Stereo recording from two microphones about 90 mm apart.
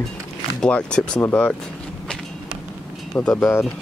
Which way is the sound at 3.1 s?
20° left (ahead or behind).